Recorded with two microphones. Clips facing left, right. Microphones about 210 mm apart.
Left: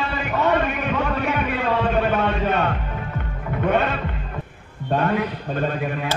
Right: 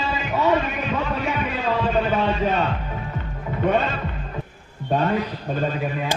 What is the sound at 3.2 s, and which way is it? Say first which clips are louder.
Music: right 1 dB; 60° left (ahead or behind).